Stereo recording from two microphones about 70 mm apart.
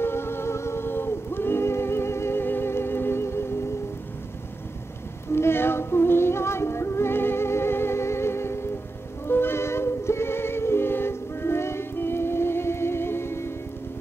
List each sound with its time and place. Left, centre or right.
0.0 s music: left
5.3 s music: left